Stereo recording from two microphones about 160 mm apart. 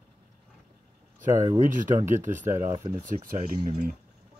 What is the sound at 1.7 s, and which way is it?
Speech, 55° right (ahead or behind).